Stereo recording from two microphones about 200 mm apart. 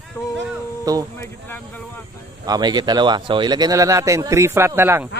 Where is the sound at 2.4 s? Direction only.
20° right (ahead or behind).